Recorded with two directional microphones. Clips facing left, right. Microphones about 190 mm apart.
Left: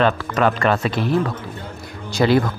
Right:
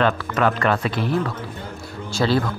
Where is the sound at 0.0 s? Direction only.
25° left (ahead or behind).